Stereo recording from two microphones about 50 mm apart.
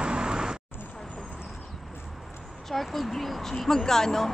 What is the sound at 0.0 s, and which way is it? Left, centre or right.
Vehicle, centre.